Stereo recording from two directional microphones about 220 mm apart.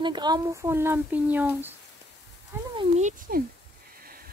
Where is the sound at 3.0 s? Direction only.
40° right (ahead or behind).